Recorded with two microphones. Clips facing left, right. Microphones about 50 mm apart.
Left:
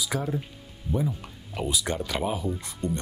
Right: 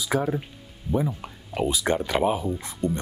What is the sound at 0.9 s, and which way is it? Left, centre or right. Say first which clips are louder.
Speech: right 3 dB; right.